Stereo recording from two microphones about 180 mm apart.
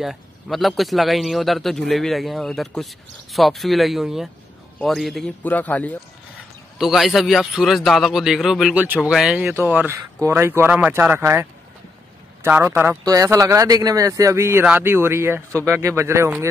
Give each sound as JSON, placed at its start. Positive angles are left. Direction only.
{"t": 0.0, "sound": "a man's voice", "side_deg": 0}
{"t": 12.4, "sound": "speech", "side_deg": -10}